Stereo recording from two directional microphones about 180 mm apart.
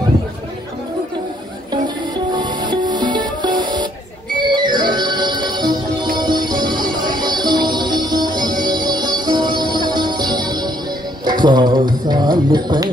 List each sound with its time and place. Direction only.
2.3 s music: 25° right (ahead or behind)